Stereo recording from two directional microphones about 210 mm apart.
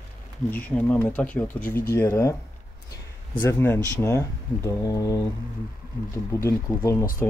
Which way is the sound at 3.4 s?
10° left (ahead or behind).